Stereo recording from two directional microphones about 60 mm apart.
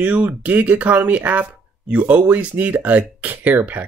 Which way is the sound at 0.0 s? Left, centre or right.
Right.